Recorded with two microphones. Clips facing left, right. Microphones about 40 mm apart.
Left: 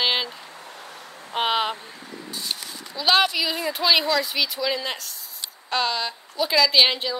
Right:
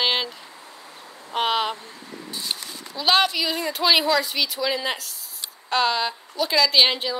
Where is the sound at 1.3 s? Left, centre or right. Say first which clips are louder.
Even; centre.